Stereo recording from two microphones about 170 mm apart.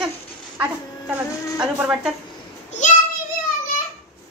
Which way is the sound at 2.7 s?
45° left (ahead or behind).